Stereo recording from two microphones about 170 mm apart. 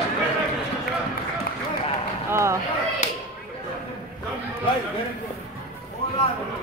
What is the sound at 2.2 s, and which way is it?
Speech, 15° right (ahead or behind).